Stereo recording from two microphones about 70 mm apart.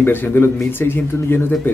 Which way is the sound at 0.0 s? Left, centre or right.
Left.